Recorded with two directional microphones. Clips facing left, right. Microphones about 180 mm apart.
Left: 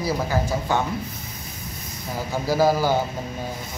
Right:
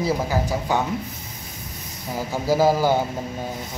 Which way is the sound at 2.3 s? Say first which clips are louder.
Right 1 dB; 15° right (ahead or behind).